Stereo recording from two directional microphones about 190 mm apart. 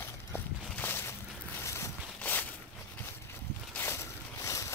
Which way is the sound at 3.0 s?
10° left (ahead or behind).